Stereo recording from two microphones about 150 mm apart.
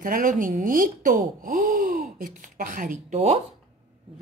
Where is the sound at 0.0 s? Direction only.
65° right (ahead or behind); by 3.3 s 50° right (ahead or behind).